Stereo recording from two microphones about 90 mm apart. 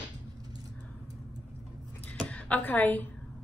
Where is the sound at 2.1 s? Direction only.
15° left (ahead or behind).